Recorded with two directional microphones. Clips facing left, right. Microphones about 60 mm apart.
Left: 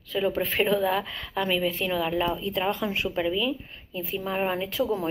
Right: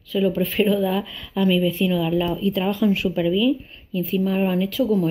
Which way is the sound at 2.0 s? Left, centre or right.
Centre.